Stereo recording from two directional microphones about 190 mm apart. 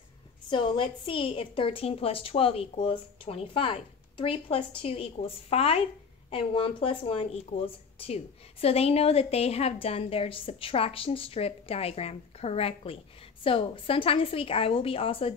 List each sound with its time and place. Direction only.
0.5 s speech: 25° left (ahead or behind)